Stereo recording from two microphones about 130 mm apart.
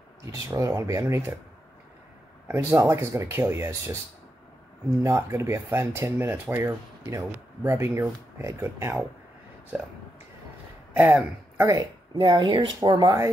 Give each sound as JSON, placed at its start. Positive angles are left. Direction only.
{"t": 0.5, "sound": "speech", "side_deg": -25}
{"t": 2.4, "sound": "speech", "side_deg": -20}
{"t": 5.0, "sound": "speech", "side_deg": -20}
{"t": 10.9, "sound": "speech", "side_deg": -15}
{"t": 11.6, "sound": "speech", "side_deg": -30}
{"t": 12.2, "sound": "speech", "side_deg": -40}